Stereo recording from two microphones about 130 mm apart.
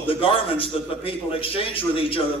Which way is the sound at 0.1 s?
45° left (ahead or behind).